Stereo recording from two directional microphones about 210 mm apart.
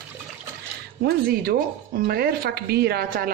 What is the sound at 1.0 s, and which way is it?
Speech, 45° right (ahead or behind).